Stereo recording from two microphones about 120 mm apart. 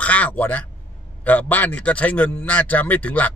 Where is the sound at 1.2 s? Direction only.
15° left (ahead or behind).